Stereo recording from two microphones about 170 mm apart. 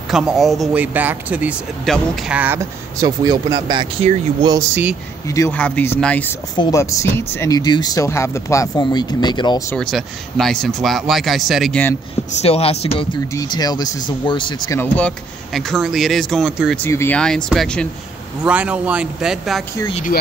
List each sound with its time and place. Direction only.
0.1 s a man's voice: 5° right (ahead or behind)
3.3 s speech: 25° right (ahead or behind)
4.6 s speech: 10° right (ahead or behind)
5.5 s speech: 10° left (ahead or behind)
6.6 s speech: 20° left (ahead or behind)
9.8 s a man's voice: centre (ahead or behind)
12.3 s speech: 40° left (ahead or behind)
13.3 s speech: 20° left (ahead or behind)
14.8 s a man's voice: 5° left (ahead or behind)
16.7 s a man's voice: 15° left (ahead or behind)
18.4 s speech: 10° right (ahead or behind)